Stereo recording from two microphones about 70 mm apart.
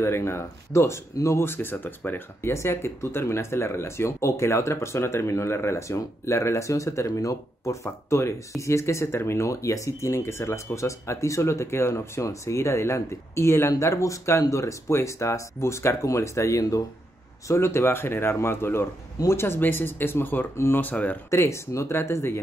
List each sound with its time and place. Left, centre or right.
0.0 s speech: left
20.8 s speech: left
21.5 s speech: left